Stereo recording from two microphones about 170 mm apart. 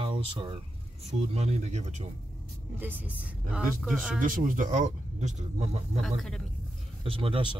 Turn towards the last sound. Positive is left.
turn(degrees=-30)  # may be behind; listen again after turning